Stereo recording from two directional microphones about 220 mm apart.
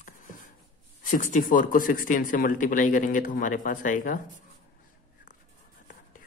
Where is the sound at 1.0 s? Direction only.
35° left (ahead or behind).